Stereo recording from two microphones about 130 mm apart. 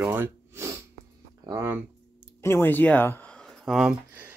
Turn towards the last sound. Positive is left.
turn(degrees=-15)  # may be behind; listen again after turning